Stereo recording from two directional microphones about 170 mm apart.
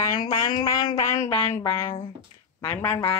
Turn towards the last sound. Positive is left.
turn(degrees=10)  # may be behind; listen again after turning